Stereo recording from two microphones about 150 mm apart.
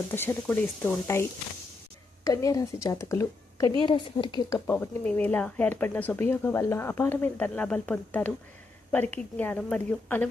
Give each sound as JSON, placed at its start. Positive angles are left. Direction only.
{"t": 0.1, "sound": "a woman's voice", "side_deg": 15}
{"t": 3.8, "sound": "a woman's voice", "side_deg": 35}
{"t": 4.6, "sound": "speech", "side_deg": 15}